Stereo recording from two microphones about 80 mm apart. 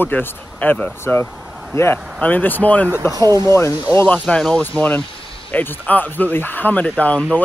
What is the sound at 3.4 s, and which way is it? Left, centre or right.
Speech, left.